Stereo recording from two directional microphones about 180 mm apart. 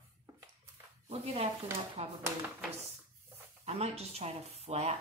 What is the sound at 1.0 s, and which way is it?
Speech, 35° right (ahead or behind).